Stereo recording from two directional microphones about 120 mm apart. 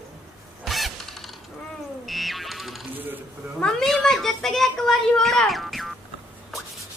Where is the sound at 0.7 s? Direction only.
Centre (ahead or behind).